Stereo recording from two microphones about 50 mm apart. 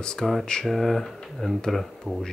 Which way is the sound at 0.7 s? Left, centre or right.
Centre.